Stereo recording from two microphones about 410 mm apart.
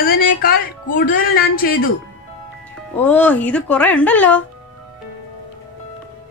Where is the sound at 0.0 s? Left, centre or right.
Left.